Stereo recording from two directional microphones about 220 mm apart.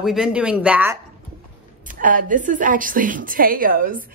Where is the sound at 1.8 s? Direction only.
35° right (ahead or behind).